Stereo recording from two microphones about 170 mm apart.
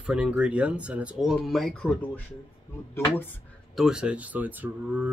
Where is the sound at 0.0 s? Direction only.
5° right (ahead or behind); by 3.3 s 15° left (ahead or behind).